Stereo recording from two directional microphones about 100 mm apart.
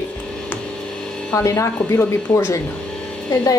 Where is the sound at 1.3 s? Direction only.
30° left (ahead or behind).